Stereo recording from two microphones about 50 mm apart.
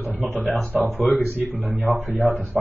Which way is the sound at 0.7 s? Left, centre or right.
Right.